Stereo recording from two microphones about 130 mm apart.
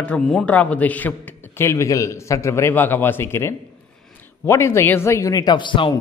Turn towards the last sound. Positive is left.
turn(degrees=40)  # may be behind; listen again after turning